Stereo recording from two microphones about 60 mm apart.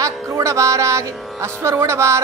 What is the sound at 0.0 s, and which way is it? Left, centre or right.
Music, right.